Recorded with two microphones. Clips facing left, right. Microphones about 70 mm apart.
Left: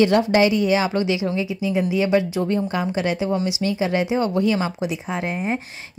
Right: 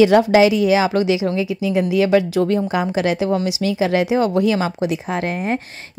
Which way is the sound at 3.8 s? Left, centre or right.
Right.